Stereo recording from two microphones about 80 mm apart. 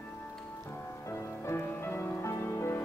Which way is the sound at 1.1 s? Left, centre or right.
Left.